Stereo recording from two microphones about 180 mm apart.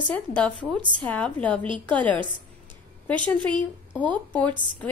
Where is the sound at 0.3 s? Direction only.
5° left (ahead or behind).